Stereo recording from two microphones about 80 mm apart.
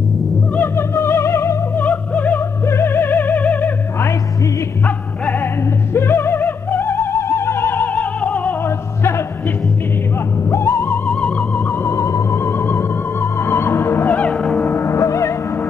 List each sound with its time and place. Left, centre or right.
0.6 s music: left
1.8 s music: left
10.5 s music: left
11.1 s music: centre
11.8 s music: left; by 14.4 s centre
14.4 s gong: centre
14.7 s music: left